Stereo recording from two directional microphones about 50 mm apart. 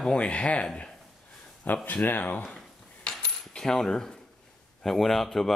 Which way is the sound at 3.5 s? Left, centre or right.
Centre.